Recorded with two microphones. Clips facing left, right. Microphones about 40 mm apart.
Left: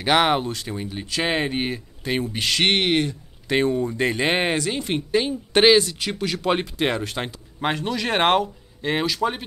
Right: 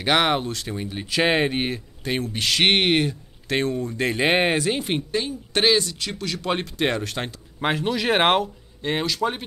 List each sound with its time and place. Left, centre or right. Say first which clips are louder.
0.0 s speech: left 1 dB; centre
2.6 s speech: right 1 dB; centre
3.4 s speech: left 3 dB; centre
4.1 s speech: right 5 dB; centre
5.1 s speech: left 5 dB; left
6.4 s speech: left 1 dB; centre